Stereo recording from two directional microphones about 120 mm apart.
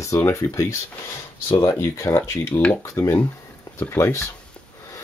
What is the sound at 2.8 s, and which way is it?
Speech, 25° left (ahead or behind).